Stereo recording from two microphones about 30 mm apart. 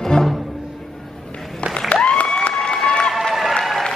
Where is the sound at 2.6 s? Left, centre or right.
Centre.